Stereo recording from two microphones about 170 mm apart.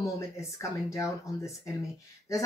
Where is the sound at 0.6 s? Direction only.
15° left (ahead or behind).